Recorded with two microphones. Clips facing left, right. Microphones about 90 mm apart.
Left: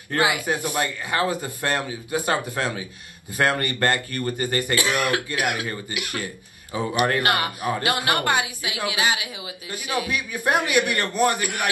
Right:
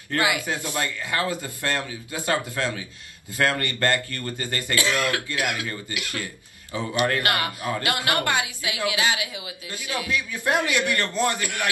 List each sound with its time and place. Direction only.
0.1 s speech: 25° left (ahead or behind)